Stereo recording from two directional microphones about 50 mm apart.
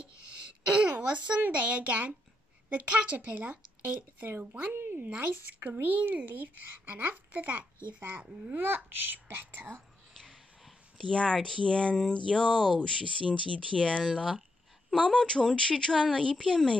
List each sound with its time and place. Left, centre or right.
0.7 s a child's voice: right
8.5 s a child's voice: right
11.0 s speech: centre
14.0 s speech: centre
15.1 s speech: centre